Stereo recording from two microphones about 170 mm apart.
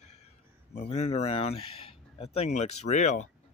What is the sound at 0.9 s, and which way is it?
Speech, 40° left (ahead or behind).